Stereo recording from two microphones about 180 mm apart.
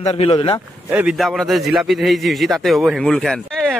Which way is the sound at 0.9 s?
5° right (ahead or behind).